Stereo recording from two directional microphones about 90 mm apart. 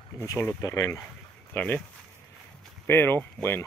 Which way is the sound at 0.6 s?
40° left (ahead or behind).